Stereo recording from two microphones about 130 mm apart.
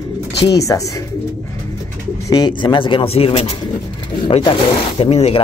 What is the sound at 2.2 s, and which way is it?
A man's voice, 30° left (ahead or behind).